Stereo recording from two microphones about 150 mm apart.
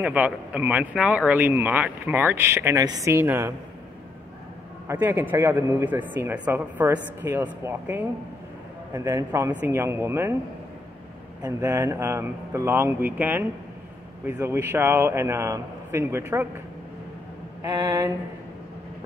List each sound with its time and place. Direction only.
0.0 s speech: 10° right (ahead or behind)
4.8 s speech: 10° right (ahead or behind)
11.6 s speech: 20° right (ahead or behind)
17.6 s speech: 20° right (ahead or behind)